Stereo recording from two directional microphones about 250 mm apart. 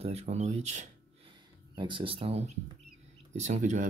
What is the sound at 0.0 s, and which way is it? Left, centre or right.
Speech, right.